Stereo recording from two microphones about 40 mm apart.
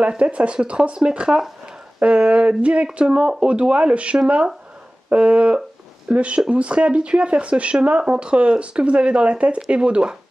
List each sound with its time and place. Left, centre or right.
0.2 s speech: right
3.2 s speech: centre